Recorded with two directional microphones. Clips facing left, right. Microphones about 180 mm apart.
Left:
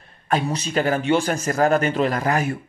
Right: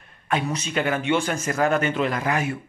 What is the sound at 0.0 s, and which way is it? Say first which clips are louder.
A man's voice: left 3 dB; 35° left (ahead or behind).